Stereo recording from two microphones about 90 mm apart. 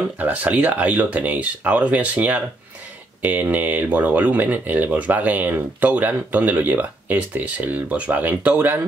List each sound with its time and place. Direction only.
0.2 s speech: 15° right (ahead or behind)